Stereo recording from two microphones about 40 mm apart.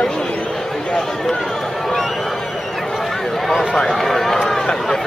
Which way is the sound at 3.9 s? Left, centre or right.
Centre.